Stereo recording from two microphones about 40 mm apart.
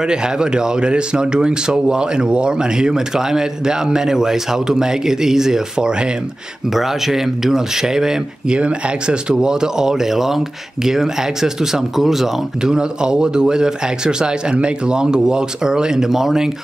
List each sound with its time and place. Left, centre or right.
0.0 s speech: centre
6.7 s speech: centre
8.5 s speech: right; by 12.7 s centre
12.7 s speech: centre